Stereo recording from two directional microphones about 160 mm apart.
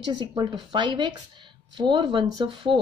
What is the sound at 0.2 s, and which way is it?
Speech, 25° right (ahead or behind).